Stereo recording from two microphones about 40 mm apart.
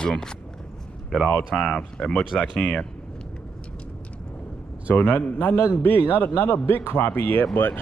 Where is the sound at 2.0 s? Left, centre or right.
Left.